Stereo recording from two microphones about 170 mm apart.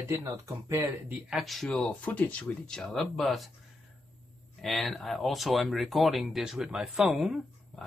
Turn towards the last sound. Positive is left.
turn(degrees=0)  # may be behind; listen again after turning